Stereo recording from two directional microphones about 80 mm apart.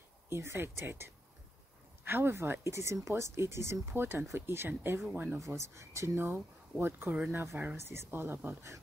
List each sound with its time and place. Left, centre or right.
0.3 s speech: right
5.4 s speech: right